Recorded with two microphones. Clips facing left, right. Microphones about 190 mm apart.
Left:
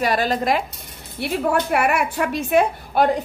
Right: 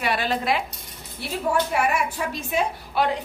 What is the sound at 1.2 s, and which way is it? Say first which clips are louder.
A woman's voice: left 3 dB; 65° left (ahead or behind).